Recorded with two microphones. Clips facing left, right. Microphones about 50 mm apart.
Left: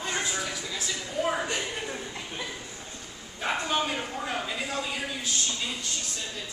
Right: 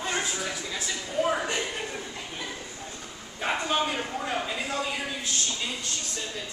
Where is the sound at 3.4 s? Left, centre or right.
Centre.